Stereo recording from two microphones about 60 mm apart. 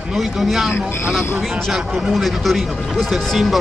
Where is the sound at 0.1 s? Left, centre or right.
Centre.